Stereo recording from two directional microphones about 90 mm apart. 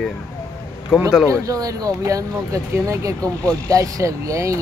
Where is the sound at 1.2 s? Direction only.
40° right (ahead or behind).